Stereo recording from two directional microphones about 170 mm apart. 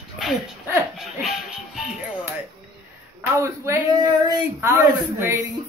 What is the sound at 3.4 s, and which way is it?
Speech, 15° right (ahead or behind).